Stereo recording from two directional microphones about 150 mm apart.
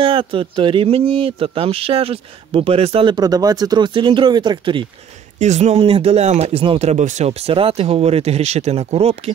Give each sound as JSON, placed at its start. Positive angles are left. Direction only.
{"t": 0.0, "sound": "speech", "side_deg": -35}
{"t": 5.4, "sound": "speech", "side_deg": -50}